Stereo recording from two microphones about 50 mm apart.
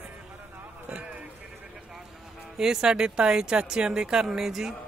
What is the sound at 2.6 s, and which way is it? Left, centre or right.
Speech, centre.